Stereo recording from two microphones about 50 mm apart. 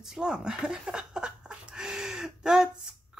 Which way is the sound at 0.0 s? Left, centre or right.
Centre.